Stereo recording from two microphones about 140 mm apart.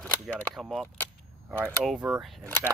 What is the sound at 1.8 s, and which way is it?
Speech, 5° right (ahead or behind).